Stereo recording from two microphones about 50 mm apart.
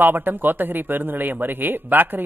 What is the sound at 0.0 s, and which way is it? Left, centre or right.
A man's voice, right.